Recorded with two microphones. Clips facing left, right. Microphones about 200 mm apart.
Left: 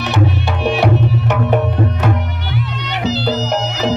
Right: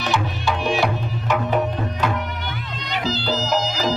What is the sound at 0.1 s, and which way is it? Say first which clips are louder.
Music: left 5 dB; 65° left (ahead or behind).